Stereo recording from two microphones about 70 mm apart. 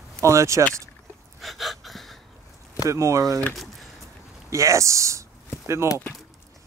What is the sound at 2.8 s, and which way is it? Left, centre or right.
Speech, right.